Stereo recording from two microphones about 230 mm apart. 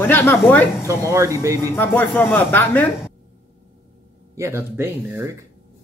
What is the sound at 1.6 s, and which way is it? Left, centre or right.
Speech, centre.